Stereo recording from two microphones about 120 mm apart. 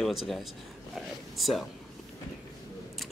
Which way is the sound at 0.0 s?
Centre (ahead or behind).